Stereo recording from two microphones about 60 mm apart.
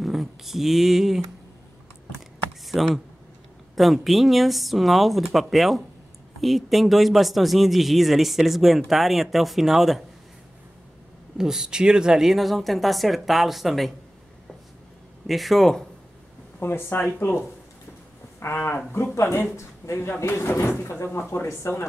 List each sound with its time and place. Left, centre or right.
0.0 s speech: centre
2.1 s typing: centre
3.7 s speech: centre
11.3 s speech: centre
15.2 s speech: centre
16.5 s speech: left
18.4 s speech: left
19.1 s speech: left